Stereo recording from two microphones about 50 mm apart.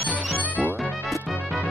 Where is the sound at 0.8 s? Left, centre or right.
Centre.